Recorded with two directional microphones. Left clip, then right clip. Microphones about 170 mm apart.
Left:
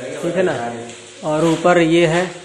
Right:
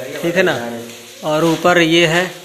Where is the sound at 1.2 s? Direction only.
5° right (ahead or behind).